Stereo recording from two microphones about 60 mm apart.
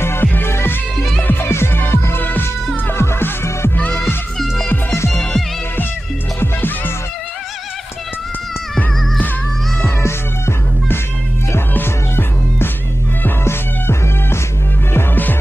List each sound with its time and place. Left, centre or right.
0.0 s music: left
0.9 s music: centre
1.2 s music: left
5.2 s music: left
9.8 s music: left
15.0 s music: left